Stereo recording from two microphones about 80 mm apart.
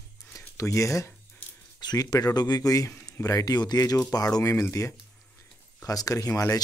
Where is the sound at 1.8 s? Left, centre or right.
Left.